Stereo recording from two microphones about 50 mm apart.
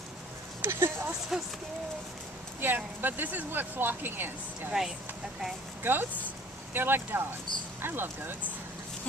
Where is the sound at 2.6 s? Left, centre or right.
Right.